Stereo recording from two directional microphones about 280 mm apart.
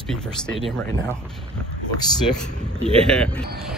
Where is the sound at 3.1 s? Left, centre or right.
Centre.